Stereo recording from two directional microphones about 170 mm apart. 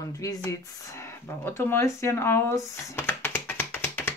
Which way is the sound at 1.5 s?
15° left (ahead or behind).